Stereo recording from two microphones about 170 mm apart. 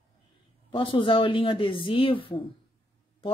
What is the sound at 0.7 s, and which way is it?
Speech, 30° left (ahead or behind).